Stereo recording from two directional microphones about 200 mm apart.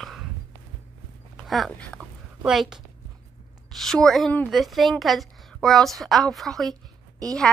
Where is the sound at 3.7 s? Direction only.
Centre (ahead or behind).